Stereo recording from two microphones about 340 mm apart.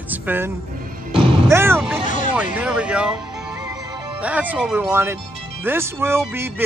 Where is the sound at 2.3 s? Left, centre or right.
Centre.